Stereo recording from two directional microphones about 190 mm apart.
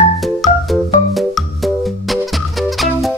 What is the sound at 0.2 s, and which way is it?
Music, centre (ahead or behind).